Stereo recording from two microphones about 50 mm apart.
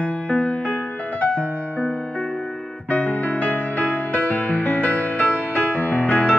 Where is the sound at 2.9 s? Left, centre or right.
Left.